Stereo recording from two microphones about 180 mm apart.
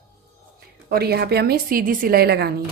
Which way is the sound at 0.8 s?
60° right (ahead or behind).